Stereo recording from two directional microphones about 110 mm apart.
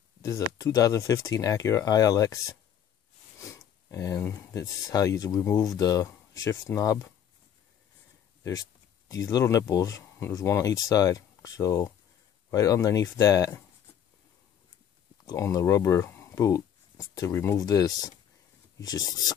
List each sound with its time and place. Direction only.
0.2 s speech: 30° left (ahead or behind)
3.3 s a sound: 30° left (ahead or behind)
4.5 s speech: 30° left (ahead or behind)
9.1 s speech: 35° left (ahead or behind)
15.2 s speech: 30° left (ahead or behind)
17.6 s speech: 35° left (ahead or behind)